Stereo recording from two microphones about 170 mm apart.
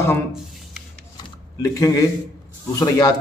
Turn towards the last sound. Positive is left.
turn(degrees=20)  # may be behind; listen again after turning